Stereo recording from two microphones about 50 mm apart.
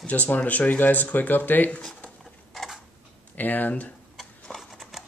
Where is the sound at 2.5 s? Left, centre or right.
Centre.